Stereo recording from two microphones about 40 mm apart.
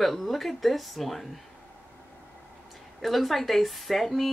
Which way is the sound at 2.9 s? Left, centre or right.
Centre.